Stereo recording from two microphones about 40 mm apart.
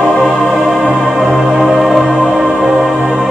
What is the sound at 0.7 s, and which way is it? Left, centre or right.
Music, centre.